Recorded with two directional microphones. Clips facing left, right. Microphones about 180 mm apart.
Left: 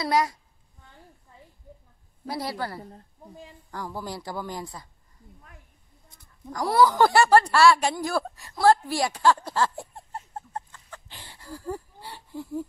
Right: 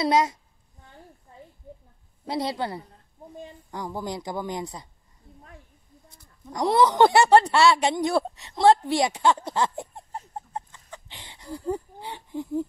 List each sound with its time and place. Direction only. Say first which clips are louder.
0.0 s speech: right 3 dB; 20° right (ahead or behind)
2.2 s speech: right 3 dB; 20° right (ahead or behind)
6.0 s speech: left 3 dB; 20° right (ahead or behind)